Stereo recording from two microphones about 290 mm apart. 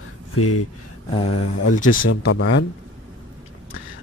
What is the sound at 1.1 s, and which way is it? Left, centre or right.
Speech, centre.